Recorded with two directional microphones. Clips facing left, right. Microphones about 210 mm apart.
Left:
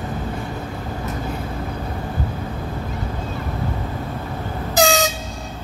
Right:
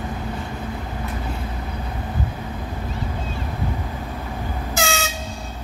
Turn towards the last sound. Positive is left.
turn(degrees=35)  # may be behind; listen again after turning